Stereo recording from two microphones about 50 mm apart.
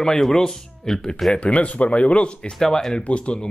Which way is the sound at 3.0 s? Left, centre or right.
Left.